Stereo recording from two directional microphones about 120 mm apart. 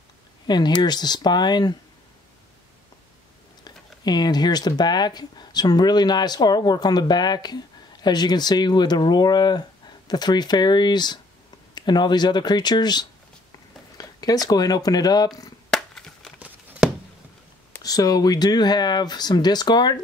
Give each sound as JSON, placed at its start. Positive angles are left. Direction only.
{"t": 0.5, "sound": "speech", "side_deg": 35}
{"t": 3.6, "sound": "speech", "side_deg": 35}
{"t": 13.9, "sound": "a sound", "side_deg": 30}
{"t": 14.5, "sound": "speech", "side_deg": 30}
{"t": 15.7, "sound": "crushing", "side_deg": 5}
{"t": 16.3, "sound": "a sound", "side_deg": -10}
{"t": 17.8, "sound": "speech", "side_deg": 30}